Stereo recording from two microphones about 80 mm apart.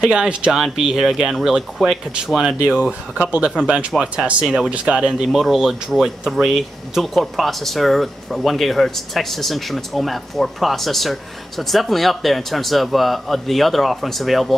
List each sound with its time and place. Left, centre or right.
0.0 s speech: centre
2.6 s speech: centre